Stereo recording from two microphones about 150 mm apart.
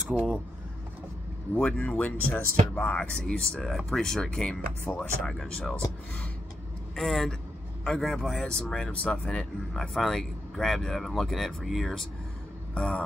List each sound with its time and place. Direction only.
1.5 s speech: 5° left (ahead or behind)
4.9 s speech: 15° left (ahead or behind)
5.2 s speech: 5° left (ahead or behind)
7.0 s speech: centre (ahead or behind)
12.7 s a sound: 5° left (ahead or behind)